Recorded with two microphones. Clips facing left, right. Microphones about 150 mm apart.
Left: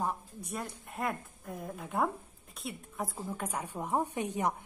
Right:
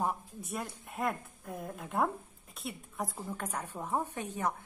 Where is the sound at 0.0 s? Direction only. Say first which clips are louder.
Right 1 dB; centre (ahead or behind).